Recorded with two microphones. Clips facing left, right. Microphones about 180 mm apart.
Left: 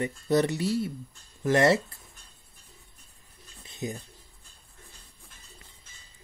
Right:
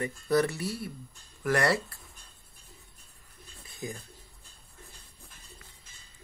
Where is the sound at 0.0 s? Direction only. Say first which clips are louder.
Left 2 dB; 20° left (ahead or behind).